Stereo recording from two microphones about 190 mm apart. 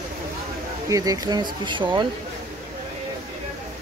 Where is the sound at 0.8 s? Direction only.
20° right (ahead or behind).